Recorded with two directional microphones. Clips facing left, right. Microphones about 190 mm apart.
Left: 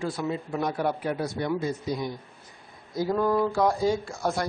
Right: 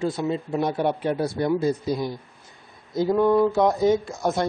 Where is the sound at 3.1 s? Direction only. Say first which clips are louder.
Right 5 dB; 20° right (ahead or behind).